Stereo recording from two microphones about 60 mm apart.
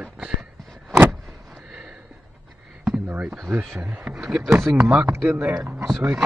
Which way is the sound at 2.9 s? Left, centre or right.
Right.